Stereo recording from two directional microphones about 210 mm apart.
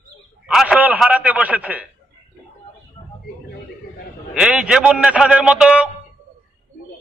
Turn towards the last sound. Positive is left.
turn(degrees=-5)  # may be behind; listen again after turning